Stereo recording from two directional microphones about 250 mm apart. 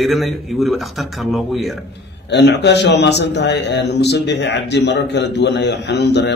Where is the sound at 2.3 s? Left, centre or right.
Left.